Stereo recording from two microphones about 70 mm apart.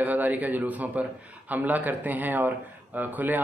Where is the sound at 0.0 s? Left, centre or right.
Right.